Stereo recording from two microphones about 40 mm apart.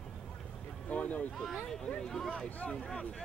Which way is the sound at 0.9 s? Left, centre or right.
Left.